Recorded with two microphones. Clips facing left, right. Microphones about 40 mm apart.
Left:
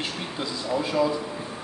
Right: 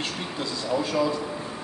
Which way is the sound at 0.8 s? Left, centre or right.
Centre.